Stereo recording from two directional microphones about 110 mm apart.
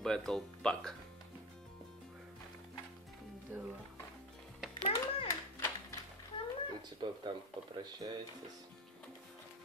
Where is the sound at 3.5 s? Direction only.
15° right (ahead or behind).